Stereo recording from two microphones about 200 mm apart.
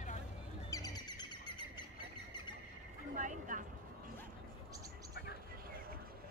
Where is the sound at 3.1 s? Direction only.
40° right (ahead or behind).